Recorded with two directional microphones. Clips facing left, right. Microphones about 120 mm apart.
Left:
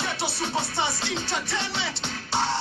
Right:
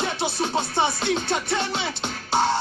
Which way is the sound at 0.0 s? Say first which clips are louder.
Right 4 dB; 45° right (ahead or behind).